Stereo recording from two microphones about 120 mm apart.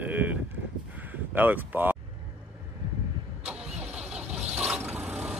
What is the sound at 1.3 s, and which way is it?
Speech, 15° right (ahead or behind).